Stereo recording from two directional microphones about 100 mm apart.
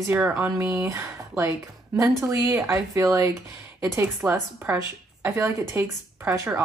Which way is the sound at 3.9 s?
20° right (ahead or behind).